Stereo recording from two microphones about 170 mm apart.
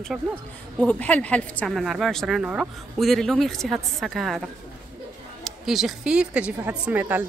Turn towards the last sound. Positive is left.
turn(degrees=-10)  # may be behind; listen again after turning